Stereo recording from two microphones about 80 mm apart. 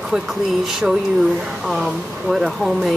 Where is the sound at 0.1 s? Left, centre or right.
Centre.